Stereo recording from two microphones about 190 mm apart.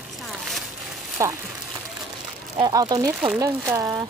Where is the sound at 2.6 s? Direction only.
20° right (ahead or behind).